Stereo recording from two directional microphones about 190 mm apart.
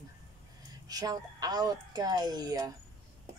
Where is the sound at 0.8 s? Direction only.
20° right (ahead or behind).